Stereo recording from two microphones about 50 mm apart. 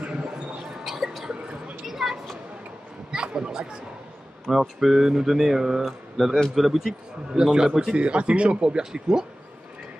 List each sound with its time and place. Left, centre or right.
0.8 s a sound: centre
4.5 s a man's voice: centre
7.9 s speech: right